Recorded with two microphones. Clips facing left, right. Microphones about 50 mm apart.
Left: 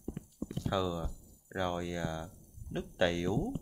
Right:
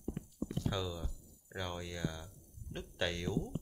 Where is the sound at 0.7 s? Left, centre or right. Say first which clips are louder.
Left 6 dB; centre.